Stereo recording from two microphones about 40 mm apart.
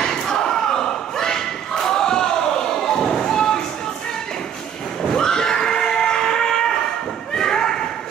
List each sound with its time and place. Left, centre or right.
0.0 s battle cry: centre
5.0 s screaming: centre
7.3 s slam: centre